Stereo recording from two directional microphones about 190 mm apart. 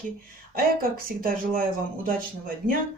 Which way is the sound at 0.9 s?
50° right (ahead or behind).